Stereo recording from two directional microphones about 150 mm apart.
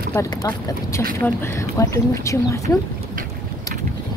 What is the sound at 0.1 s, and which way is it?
Speech, 20° left (ahead or behind).